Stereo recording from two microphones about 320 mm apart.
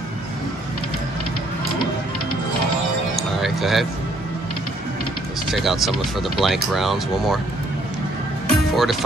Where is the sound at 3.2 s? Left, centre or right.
Centre.